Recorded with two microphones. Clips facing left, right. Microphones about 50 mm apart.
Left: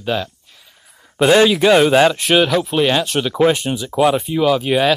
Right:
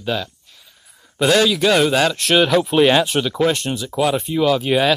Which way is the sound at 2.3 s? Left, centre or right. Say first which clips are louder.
Even; centre.